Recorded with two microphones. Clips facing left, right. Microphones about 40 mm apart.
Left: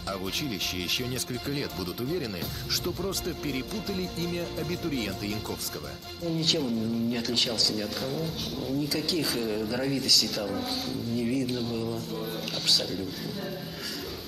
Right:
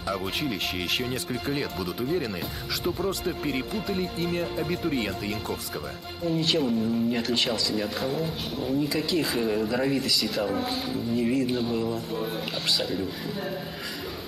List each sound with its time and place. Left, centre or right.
0.1 s speech: centre